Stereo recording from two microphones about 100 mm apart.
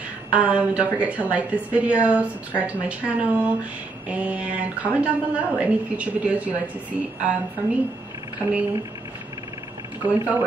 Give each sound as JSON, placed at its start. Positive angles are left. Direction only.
{"t": 0.3, "sound": "a woman's voice", "side_deg": -10}
{"t": 8.4, "sound": "a woman's voice", "side_deg": -15}
{"t": 10.0, "sound": "a woman's voice", "side_deg": -15}